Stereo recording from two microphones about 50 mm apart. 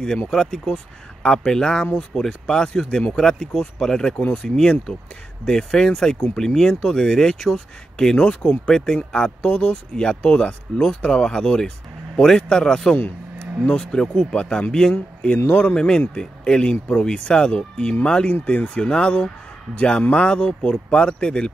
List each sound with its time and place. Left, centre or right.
0.3 s speech: centre
15.3 s speech: left